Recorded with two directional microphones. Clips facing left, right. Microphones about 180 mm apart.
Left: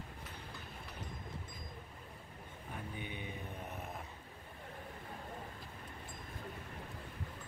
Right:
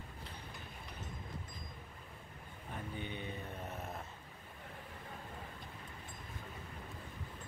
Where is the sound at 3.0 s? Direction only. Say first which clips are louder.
Right 2 dB; 10° left (ahead or behind).